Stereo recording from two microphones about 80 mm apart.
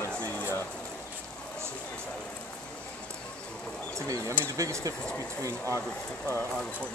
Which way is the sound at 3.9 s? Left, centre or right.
Right.